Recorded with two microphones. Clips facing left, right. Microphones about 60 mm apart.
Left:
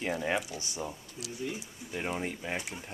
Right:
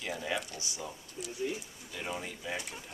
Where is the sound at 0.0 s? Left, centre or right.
Left.